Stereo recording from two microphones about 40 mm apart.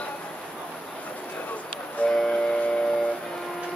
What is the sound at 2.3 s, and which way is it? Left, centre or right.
Train, left.